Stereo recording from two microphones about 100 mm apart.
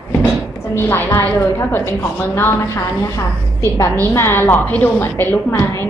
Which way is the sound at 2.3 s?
25° left (ahead or behind).